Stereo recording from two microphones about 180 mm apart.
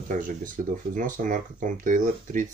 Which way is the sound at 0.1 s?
45° right (ahead or behind).